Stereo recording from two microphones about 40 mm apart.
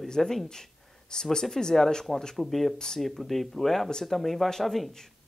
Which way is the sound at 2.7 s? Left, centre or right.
Centre.